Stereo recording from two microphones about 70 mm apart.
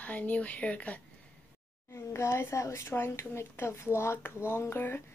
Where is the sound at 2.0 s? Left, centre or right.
Left.